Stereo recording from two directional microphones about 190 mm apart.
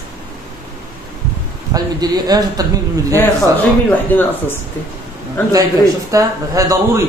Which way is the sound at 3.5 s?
10° left (ahead or behind).